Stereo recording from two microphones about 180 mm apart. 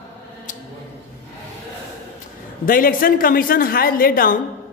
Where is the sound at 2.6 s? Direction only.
50° left (ahead or behind).